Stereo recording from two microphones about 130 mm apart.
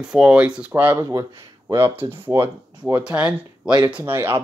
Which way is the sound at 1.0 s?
25° right (ahead or behind).